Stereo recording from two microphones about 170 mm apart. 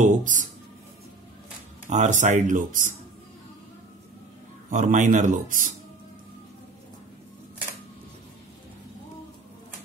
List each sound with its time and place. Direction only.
0.0 s a sound: 50° right (ahead or behind)
1.9 s speech: 45° right (ahead or behind)
4.6 s speech: 50° right (ahead or behind)